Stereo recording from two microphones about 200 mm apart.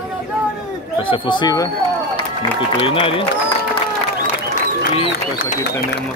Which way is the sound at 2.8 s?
25° left (ahead or behind).